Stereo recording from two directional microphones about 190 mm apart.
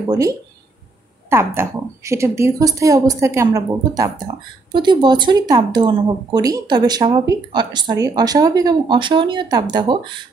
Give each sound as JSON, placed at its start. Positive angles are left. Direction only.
{"t": 0.0, "sound": "a woman's voice", "side_deg": -20}